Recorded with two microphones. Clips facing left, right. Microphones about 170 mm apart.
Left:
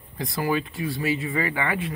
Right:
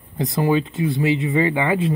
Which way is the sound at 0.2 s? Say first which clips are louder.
Right 6 dB; 20° right (ahead or behind).